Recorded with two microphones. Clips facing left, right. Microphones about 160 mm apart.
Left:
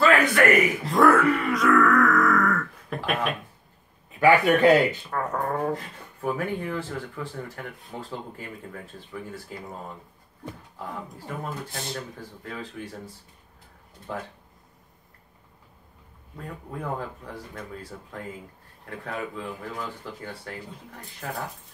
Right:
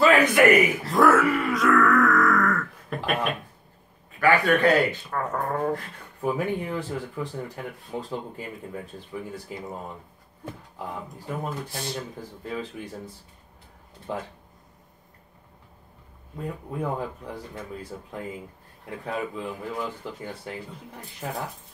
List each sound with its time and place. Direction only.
0.0 s speech: 20° right (ahead or behind)
0.9 s grunt: centre (ahead or behind)
4.2 s a man's voice: 20° left (ahead or behind)
5.1 s a sound: centre (ahead or behind)
6.2 s speech: 15° right (ahead or behind)
10.8 s speech: 15° right (ahead or behind)
16.3 s speech: 20° right (ahead or behind)